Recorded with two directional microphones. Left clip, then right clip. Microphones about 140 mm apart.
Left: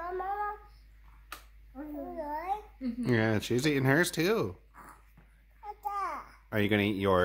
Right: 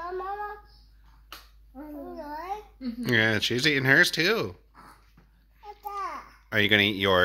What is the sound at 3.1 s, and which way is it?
Speech, 15° left (ahead or behind).